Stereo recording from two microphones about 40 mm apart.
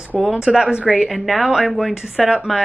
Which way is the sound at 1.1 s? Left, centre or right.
Centre.